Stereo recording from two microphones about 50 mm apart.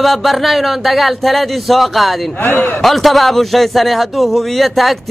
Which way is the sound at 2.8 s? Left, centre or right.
Centre.